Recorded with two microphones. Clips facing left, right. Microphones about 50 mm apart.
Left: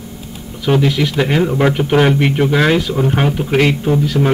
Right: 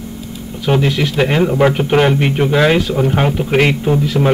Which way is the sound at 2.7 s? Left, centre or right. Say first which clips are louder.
Right 1 dB; centre.